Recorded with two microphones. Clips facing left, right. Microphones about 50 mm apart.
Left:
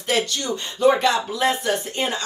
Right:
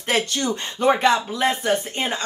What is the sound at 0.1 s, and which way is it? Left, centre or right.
Speech, right.